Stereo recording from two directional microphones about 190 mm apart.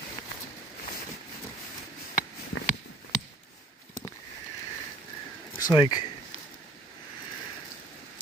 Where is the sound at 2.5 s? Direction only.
90° left.